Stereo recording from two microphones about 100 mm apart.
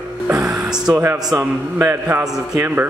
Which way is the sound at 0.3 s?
30° right (ahead or behind).